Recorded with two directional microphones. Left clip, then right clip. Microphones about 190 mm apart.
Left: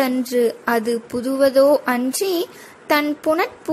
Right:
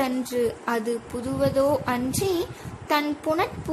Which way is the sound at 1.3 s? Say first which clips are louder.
Left 8 dB; 25° left (ahead or behind).